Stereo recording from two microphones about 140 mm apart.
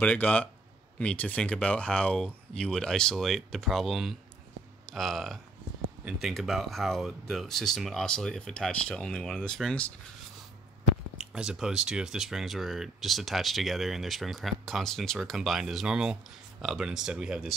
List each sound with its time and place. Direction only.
0.0 s speech: 10° left (ahead or behind)
11.1 s speech: 5° right (ahead or behind)